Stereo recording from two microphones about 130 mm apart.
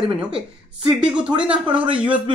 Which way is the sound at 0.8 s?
5° right (ahead or behind).